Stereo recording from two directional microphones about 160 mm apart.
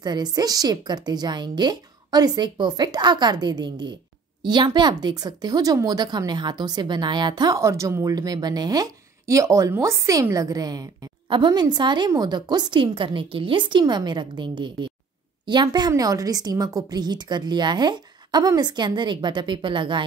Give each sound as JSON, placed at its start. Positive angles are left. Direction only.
{"t": 0.0, "sound": "a woman's voice", "side_deg": -25}